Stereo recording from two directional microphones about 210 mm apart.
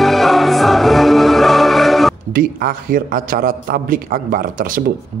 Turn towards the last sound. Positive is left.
turn(degrees=-40)  # may be behind; listen again after turning